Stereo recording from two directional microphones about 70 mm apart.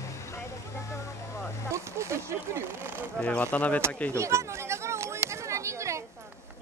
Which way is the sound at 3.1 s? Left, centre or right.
Centre.